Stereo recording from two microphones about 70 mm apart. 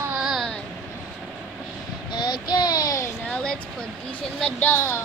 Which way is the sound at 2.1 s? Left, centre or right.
Left.